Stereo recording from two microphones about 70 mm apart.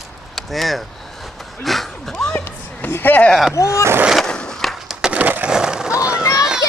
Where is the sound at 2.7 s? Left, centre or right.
Left.